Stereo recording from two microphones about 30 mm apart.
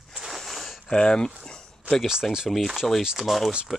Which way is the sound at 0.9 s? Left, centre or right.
Left.